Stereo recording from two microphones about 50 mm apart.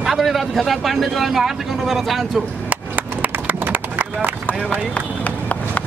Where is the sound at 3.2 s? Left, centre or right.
Right.